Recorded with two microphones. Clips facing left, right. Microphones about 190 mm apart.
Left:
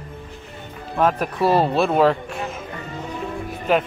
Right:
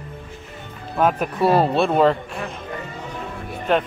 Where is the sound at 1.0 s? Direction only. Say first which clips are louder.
Even; centre (ahead or behind).